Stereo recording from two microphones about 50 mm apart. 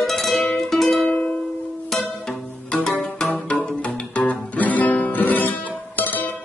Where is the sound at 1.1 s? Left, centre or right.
Left.